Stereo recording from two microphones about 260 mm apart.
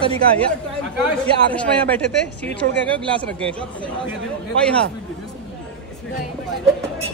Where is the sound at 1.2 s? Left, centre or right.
Centre.